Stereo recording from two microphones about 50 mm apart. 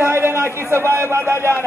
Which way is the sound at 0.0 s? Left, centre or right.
Right.